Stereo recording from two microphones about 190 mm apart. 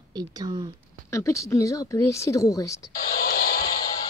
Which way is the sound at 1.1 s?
15° left (ahead or behind).